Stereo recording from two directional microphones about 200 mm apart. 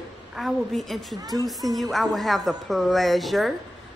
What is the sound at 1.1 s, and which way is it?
Speech, 20° right (ahead or behind).